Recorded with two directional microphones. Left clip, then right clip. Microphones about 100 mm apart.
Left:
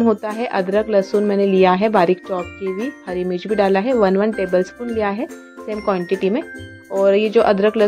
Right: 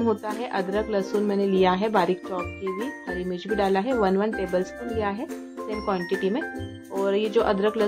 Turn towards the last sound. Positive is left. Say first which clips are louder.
# left 8 dB
turn(degrees=40)  # may be behind; listen again after turning